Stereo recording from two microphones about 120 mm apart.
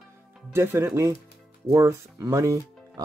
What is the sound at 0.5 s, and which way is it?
Speech, 20° right (ahead or behind).